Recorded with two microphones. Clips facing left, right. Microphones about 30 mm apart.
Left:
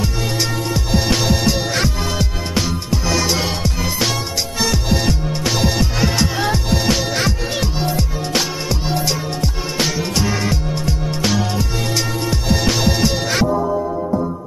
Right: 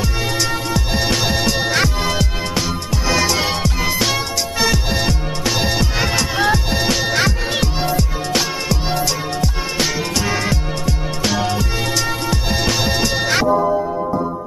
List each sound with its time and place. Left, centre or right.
0.7 s music: centre
4.6 s music: centre
7.2 s music: centre
12.6 s music: centre
13.5 s music: centre